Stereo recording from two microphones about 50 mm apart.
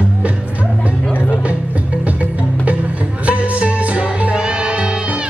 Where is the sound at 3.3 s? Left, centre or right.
Right.